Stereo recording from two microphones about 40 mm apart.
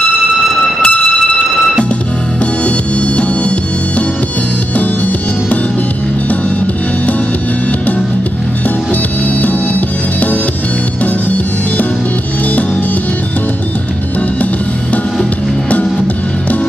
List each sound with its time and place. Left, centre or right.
0.6 s a sound: centre
4.7 s music: left
9.4 s music: left